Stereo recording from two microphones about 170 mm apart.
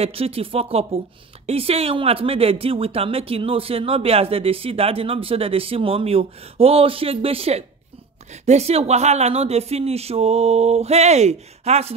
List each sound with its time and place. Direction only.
0.0 s speech: 35° right (ahead or behind)